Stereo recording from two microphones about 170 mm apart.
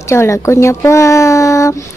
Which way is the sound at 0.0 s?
15° left (ahead or behind).